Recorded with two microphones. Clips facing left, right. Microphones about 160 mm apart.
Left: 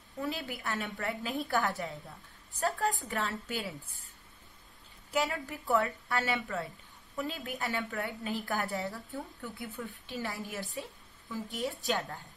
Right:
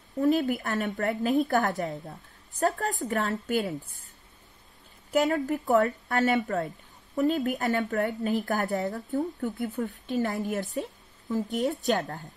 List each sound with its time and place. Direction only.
0.2 s a woman's voice: 45° right (ahead or behind)
5.1 s a woman's voice: 45° right (ahead or behind)